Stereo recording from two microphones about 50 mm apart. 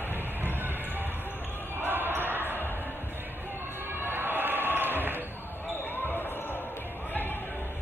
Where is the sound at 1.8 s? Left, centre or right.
Right.